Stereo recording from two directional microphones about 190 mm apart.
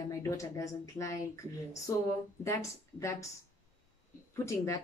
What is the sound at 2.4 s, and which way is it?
Speech, 15° left (ahead or behind).